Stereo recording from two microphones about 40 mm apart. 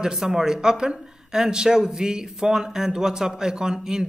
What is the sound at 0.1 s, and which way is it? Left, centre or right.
Speech, centre.